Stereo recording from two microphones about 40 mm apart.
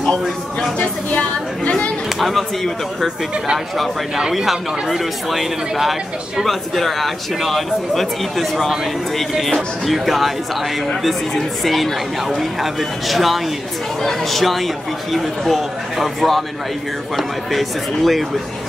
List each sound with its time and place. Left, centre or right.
2.1 s speech: centre
3.5 s speech: centre